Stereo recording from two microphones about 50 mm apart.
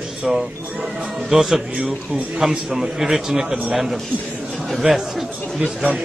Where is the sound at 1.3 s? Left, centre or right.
Centre.